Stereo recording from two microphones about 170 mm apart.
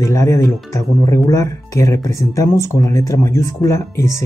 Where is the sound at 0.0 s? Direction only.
15° left (ahead or behind).